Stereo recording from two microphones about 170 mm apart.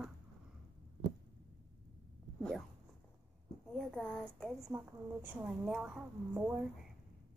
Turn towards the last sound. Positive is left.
turn(degrees=-5)  # may be behind; listen again after turning